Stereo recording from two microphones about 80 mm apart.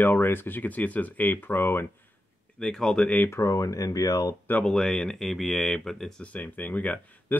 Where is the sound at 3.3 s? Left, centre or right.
Left.